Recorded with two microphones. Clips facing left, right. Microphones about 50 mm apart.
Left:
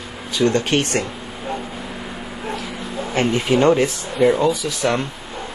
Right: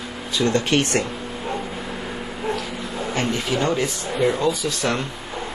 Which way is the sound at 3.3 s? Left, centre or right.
Left.